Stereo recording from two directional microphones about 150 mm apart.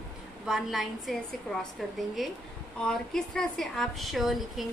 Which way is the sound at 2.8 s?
5° left (ahead or behind).